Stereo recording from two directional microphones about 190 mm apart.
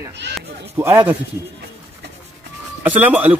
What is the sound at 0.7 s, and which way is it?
Speech, 10° right (ahead or behind).